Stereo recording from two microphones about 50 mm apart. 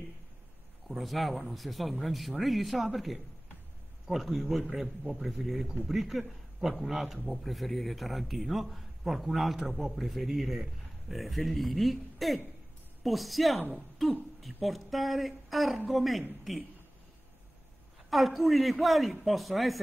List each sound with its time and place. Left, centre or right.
0.8 s a man's voice: centre
18.1 s a man's voice: centre